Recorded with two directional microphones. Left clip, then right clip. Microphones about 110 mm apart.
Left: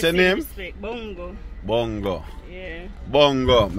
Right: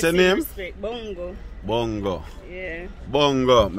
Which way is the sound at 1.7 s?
25° right (ahead or behind).